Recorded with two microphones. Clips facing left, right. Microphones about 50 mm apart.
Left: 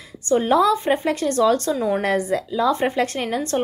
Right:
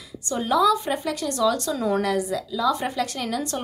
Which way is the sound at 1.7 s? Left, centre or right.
Left.